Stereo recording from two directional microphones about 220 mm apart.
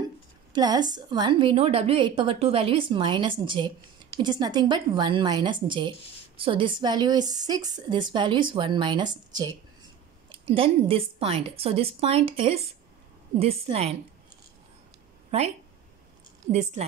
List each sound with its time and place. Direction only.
0.5 s a woman's voice: 20° right (ahead or behind)
15.3 s speech: 30° right (ahead or behind)